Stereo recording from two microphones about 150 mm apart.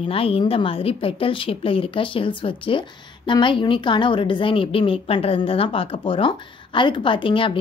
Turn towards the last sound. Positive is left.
turn(degrees=35)  # may be behind; listen again after turning